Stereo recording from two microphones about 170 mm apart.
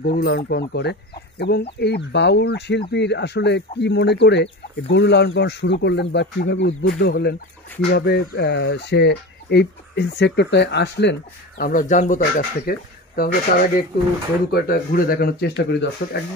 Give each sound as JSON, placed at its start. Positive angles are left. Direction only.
{"t": 0.0, "sound": "speech", "side_deg": 70}
{"t": 12.6, "sound": "speech", "side_deg": 60}